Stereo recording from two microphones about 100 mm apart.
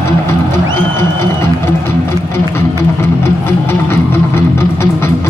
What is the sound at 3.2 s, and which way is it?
Music, 25° left (ahead or behind).